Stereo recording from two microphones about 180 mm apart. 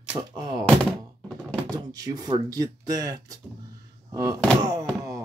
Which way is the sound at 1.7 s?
20° right (ahead or behind).